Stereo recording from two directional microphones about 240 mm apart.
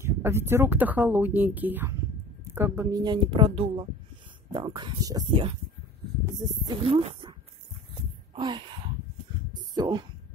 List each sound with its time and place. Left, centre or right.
0.0 s speech: centre
8.4 s speech: centre
9.8 s speech: centre